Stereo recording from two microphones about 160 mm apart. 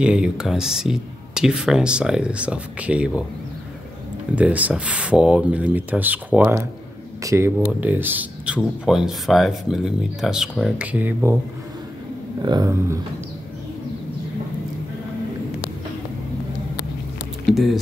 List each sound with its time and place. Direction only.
0.0 s speech: 5° right (ahead or behind)
4.4 s speech: 10° right (ahead or behind)
12.4 s speech: 25° right (ahead or behind)
17.5 s a sound: centre (ahead or behind)